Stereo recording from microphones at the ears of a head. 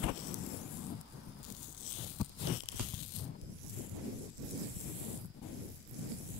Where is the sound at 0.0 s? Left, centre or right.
Left.